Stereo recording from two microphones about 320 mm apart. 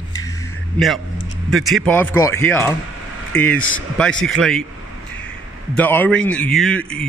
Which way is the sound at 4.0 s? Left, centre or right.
Centre.